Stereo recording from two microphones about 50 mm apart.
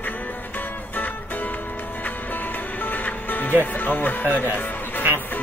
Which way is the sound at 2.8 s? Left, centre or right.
Left.